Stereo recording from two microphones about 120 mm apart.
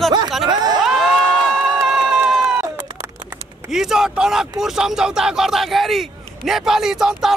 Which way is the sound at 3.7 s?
5° right (ahead or behind).